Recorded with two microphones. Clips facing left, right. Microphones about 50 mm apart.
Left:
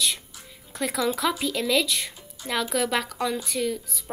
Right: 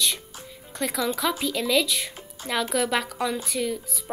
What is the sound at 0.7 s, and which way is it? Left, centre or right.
A woman's voice, centre.